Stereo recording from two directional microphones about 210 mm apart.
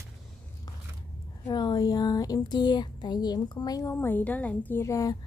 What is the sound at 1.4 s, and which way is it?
Speech, 20° left (ahead or behind).